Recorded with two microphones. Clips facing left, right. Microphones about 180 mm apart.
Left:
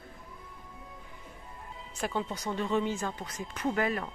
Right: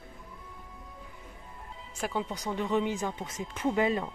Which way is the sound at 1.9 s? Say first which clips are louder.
Even; 10° right (ahead or behind).